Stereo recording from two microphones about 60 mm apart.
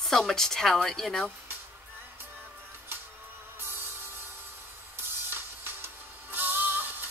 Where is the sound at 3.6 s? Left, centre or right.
Right.